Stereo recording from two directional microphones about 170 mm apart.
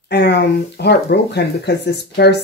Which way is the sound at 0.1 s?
85° left.